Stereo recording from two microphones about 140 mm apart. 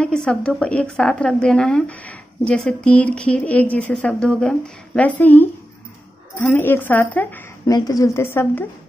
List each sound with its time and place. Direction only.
0.0 s a woman's voice: 5° left (ahead or behind)
6.5 s a woman's voice: 15° left (ahead or behind)
7.6 s a woman's voice: 25° left (ahead or behind)